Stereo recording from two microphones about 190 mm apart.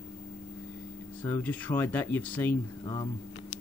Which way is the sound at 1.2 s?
10° left (ahead or behind).